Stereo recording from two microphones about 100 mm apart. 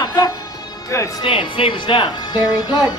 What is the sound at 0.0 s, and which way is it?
Music, 45° left (ahead or behind).